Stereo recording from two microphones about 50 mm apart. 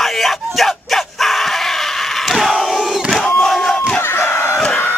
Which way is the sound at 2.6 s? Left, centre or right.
Centre.